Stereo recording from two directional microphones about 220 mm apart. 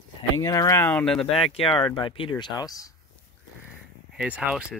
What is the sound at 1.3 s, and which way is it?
Speech, 25° left (ahead or behind).